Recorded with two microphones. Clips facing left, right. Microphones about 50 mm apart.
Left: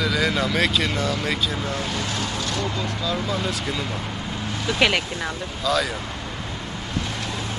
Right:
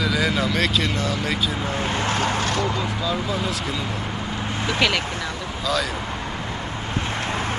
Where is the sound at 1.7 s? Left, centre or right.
Right.